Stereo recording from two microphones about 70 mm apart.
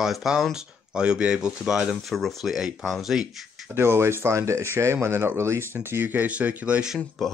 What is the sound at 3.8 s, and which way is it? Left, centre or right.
Speech, right.